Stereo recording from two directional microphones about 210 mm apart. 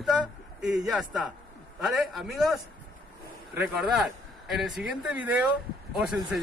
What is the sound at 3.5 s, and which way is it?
Speech, 5° right (ahead or behind).